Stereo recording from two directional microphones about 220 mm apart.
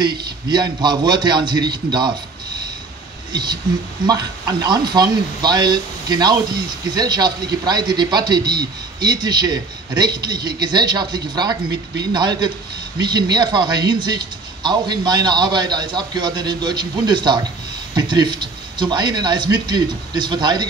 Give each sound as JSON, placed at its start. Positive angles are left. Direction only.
{"t": 0.0, "sound": "speech", "side_deg": -20}
{"t": 4.0, "sound": "speech", "side_deg": -20}